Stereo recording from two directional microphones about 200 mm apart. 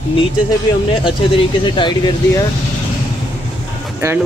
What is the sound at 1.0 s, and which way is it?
Speech, 25° left (ahead or behind).